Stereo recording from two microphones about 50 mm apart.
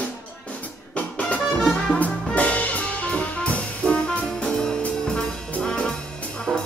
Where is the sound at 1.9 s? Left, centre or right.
Left.